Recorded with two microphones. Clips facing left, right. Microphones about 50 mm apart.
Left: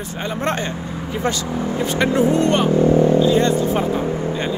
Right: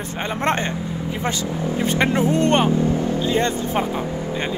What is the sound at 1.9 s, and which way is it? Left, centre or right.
Speech, right.